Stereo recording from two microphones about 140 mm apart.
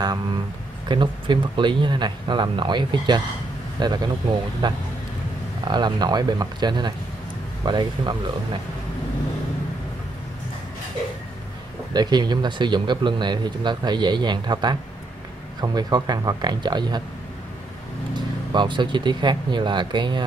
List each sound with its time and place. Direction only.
0.8 s speech: 35° right (ahead or behind)
11.9 s speech: 30° right (ahead or behind)
18.5 s speech: 35° right (ahead or behind)